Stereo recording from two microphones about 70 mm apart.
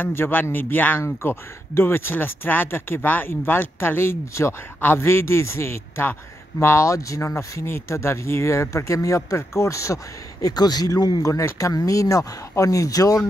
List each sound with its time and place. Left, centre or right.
0.0 s speech: left
1.0 s speech: left
10.4 s speech: left
11.2 s speech: left